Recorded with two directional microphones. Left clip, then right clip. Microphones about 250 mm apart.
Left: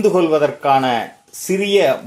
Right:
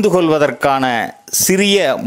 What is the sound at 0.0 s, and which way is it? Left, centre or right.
A man's voice, right.